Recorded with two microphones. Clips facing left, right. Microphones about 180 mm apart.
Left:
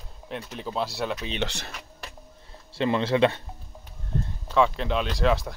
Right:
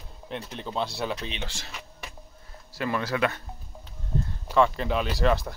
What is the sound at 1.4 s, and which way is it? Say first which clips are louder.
Speech: left 8 dB; 65° left (ahead or behind).